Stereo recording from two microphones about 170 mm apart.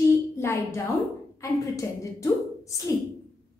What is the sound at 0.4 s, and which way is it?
A woman's voice, 15° left (ahead or behind).